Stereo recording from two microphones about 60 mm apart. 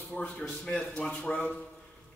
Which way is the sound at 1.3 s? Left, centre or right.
Left.